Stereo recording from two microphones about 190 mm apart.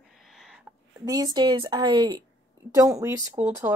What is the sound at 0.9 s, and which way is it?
A woman's voice, 20° right (ahead or behind).